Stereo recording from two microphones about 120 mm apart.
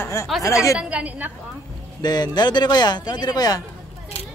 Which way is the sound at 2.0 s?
35° left (ahead or behind).